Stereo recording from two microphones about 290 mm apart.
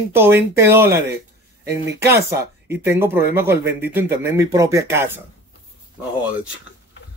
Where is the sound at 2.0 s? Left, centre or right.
Right.